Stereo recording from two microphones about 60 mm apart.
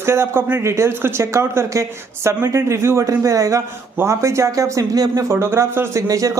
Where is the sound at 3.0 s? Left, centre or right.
Right.